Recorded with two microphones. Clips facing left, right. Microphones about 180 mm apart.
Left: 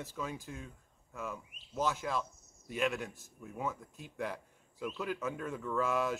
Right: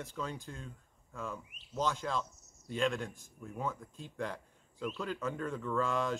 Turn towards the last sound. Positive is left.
turn(degrees=5)  # may be behind; listen again after turning